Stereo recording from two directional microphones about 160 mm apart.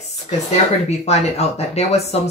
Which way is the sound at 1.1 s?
40° left (ahead or behind).